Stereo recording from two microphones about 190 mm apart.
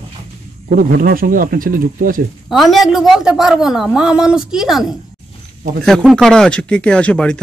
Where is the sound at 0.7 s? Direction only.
50° right (ahead or behind).